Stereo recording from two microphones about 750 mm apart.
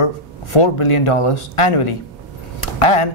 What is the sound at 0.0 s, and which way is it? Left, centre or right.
A man's voice, left.